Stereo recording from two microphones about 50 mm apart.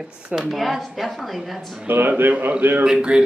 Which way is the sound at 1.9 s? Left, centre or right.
Right.